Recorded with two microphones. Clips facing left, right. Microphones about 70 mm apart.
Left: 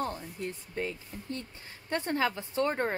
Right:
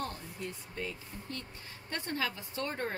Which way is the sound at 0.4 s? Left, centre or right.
Left.